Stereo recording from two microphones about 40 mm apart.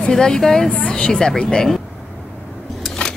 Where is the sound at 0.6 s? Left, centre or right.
Left.